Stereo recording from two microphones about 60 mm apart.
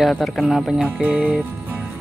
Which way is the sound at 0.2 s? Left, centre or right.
Centre.